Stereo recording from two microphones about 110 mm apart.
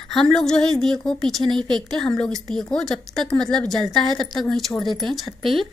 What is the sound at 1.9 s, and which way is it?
Speech, 5° left (ahead or behind).